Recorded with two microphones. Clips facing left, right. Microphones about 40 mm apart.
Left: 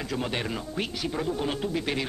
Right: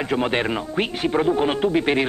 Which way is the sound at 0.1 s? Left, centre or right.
Right.